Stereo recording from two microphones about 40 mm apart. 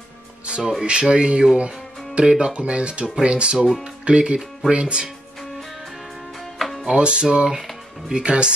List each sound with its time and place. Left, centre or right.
0.5 s music: centre
0.8 s speech: right
3.5 s speech: centre
3.8 s speech: right
6.8 s speech: right